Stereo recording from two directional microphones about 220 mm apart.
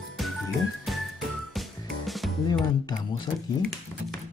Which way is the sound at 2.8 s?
20° left (ahead or behind).